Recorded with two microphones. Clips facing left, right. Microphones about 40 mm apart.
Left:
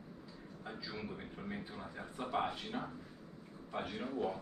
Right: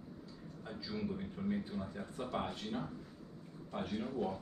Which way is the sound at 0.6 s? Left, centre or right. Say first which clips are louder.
Right 3 dB; centre.